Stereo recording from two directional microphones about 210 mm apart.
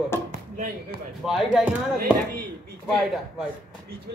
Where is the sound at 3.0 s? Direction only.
Centre (ahead or behind).